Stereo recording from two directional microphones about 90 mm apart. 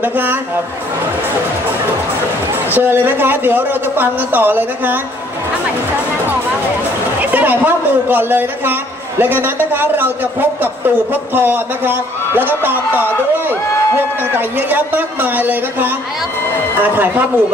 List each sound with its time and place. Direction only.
0.0 s a man's voice: 20° right (ahead or behind)
2.7 s a man's voice: 20° right (ahead or behind)
7.2 s a man's voice: 20° right (ahead or behind)
11.3 s a man's voice: 20° right (ahead or behind)